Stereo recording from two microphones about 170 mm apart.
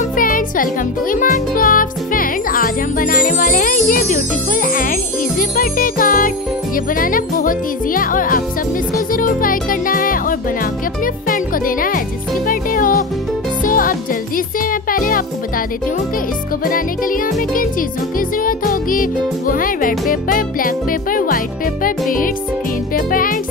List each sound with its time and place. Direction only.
0.1 s music: 55° left (ahead or behind)
1.1 s speech: 50° left (ahead or behind)
5.4 s music: 55° left (ahead or behind)
16.6 s music: 55° left (ahead or behind)
18.4 s speech: 55° left (ahead or behind)
22.9 s music: 55° left (ahead or behind)